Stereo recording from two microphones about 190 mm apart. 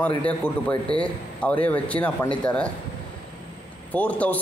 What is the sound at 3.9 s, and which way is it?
Speech, 10° left (ahead or behind).